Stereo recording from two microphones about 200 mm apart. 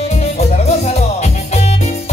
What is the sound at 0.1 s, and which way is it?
Music, 35° left (ahead or behind).